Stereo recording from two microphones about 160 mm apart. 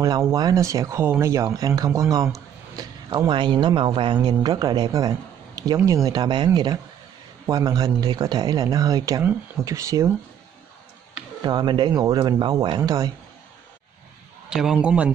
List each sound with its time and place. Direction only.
0.0 s speech: 20° right (ahead or behind)
11.4 s speech: 30° right (ahead or behind)
14.5 s a man's voice: 5° right (ahead or behind)